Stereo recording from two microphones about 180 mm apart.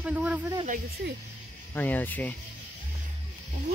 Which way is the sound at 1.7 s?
10° left (ahead or behind).